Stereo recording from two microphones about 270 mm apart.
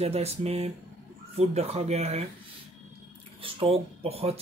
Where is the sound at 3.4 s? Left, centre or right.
Right.